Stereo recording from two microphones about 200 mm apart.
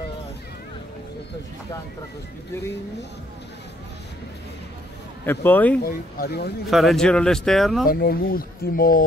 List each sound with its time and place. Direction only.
5.2 s speech: 10° left (ahead or behind)
5.9 s speech: 50° left (ahead or behind)
6.7 s speech: centre (ahead or behind)
7.8 s speech: 50° left (ahead or behind)